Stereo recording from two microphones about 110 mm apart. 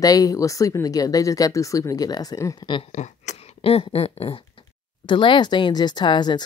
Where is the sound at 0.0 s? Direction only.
35° left (ahead or behind).